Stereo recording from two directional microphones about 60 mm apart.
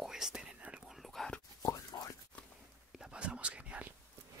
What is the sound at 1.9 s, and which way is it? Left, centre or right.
Whispering, left.